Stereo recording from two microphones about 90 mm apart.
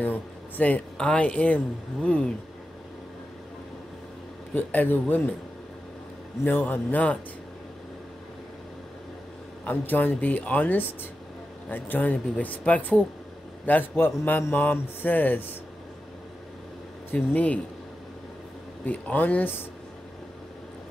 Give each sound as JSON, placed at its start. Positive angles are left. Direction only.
{"t": 0.0, "sound": "speech", "side_deg": 15}
{"t": 4.6, "sound": "speech", "side_deg": 20}
{"t": 6.4, "sound": "speech", "side_deg": 20}
{"t": 9.7, "sound": "speech", "side_deg": 20}
{"t": 17.1, "sound": "speech", "side_deg": 15}
{"t": 18.9, "sound": "speech", "side_deg": 20}